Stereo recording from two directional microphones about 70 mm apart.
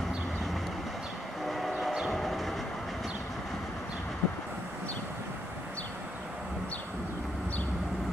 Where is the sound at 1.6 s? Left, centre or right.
Centre.